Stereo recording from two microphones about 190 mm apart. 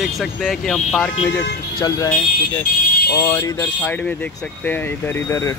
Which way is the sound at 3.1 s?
20° left (ahead or behind).